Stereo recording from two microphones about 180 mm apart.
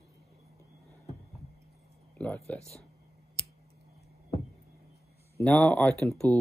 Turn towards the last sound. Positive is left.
turn(degrees=5)  # may be behind; listen again after turning